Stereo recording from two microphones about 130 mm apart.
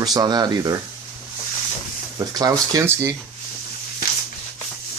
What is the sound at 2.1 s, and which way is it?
Speech, 30° right (ahead or behind).